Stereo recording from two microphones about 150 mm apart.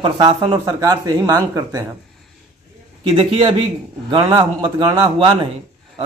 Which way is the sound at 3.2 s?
40° right (ahead or behind).